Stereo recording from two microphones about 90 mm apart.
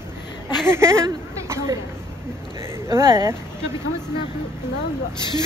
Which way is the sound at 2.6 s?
30° right (ahead or behind).